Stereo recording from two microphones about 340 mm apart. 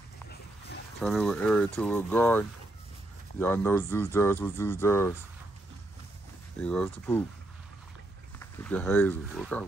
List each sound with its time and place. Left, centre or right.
1.0 s speech: centre
6.6 s speech: centre
8.4 s speech: centre